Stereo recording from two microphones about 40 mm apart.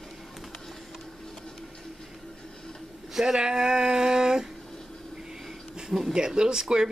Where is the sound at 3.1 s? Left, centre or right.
Centre.